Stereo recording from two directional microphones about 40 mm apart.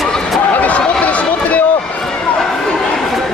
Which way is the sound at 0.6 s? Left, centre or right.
Left.